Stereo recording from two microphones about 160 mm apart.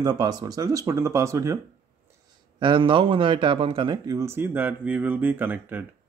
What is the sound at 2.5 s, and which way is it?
Speech, 30° right (ahead or behind).